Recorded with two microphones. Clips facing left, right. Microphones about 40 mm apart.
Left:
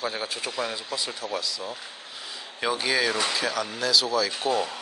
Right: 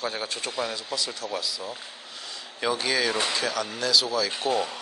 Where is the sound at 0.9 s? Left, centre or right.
Left.